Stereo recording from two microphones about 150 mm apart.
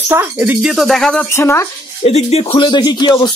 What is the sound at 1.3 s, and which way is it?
Speech, 15° left (ahead or behind).